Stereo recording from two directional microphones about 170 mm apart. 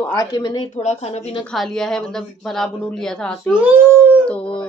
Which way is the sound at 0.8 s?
40° left (ahead or behind).